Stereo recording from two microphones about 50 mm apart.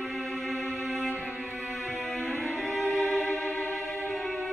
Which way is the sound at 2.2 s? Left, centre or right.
Right.